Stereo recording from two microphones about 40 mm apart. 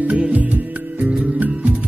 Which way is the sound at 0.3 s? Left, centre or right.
Right.